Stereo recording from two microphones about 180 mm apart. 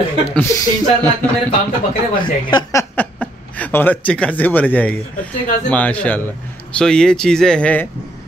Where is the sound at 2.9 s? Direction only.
10° left (ahead or behind).